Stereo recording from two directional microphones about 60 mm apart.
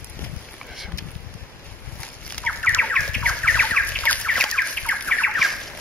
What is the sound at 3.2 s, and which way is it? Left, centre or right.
Bird, left.